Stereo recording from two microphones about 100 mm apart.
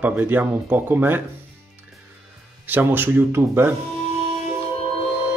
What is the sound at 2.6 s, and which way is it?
Speech, 20° right (ahead or behind).